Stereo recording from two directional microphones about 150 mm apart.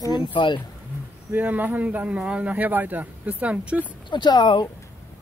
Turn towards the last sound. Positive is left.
turn(degrees=30)  # may be behind; listen again after turning